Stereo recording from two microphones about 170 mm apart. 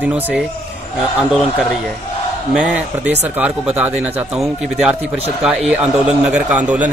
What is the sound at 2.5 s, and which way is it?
A man's voice, 5° right (ahead or behind).